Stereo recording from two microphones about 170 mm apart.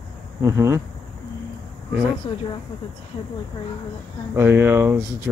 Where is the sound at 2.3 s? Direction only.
30° left (ahead or behind).